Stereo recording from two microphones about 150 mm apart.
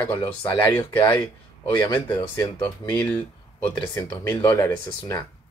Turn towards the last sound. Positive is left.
turn(degrees=15)  # may be behind; listen again after turning